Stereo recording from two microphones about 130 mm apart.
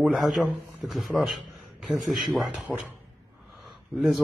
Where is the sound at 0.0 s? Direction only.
Centre (ahead or behind).